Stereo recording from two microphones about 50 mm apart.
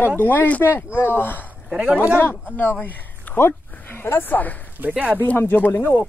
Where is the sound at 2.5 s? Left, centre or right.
Left.